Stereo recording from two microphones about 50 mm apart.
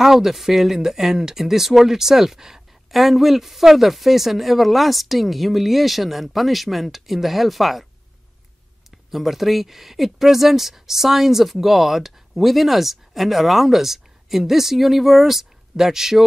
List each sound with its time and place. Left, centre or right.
0.0 s speech: centre
9.1 s speech: centre